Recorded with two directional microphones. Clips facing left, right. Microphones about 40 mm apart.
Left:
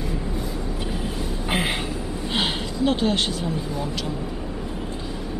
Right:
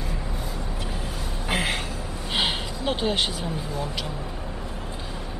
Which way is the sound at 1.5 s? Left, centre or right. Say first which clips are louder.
Left 1 dB; centre.